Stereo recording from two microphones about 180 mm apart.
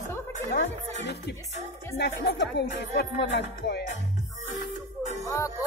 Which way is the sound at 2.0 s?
70° left (ahead or behind).